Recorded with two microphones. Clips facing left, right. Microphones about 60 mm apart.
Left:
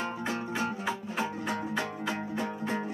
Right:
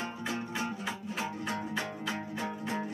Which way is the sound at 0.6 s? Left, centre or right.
Left.